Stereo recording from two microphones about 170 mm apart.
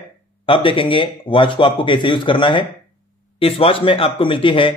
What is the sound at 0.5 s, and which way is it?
Speech, 30° left (ahead or behind).